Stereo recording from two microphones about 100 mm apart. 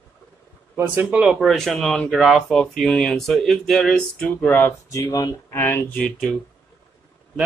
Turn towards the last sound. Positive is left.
turn(degrees=5)  # may be behind; listen again after turning